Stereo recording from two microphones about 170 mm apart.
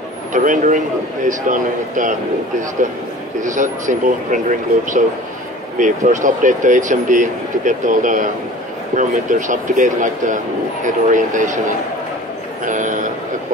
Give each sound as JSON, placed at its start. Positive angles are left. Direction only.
{"t": 0.3, "sound": "speech", "side_deg": -50}
{"t": 3.4, "sound": "speech", "side_deg": -45}
{"t": 12.6, "sound": "a man's voice", "side_deg": -50}